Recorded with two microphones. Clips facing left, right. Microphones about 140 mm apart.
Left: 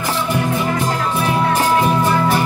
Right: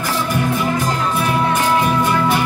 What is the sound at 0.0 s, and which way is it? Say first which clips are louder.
Music: even; 25° left (ahead or behind).